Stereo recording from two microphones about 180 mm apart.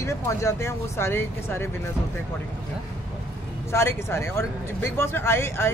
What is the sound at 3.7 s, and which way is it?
Speech, 15° left (ahead or behind).